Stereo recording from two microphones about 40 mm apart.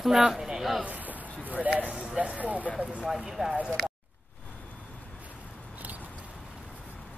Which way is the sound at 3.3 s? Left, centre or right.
Centre.